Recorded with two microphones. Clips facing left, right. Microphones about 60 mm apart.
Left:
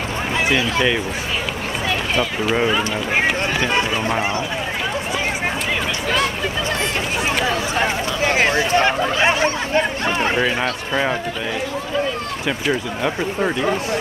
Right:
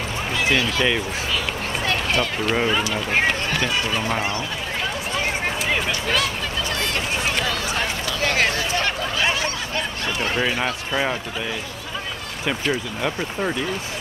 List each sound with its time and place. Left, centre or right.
1.9 s speech: centre
7.4 s a sound: left
10.9 s speech: centre
12.4 s speech: centre